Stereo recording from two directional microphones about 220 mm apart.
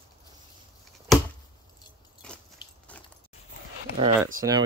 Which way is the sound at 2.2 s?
5° left (ahead or behind).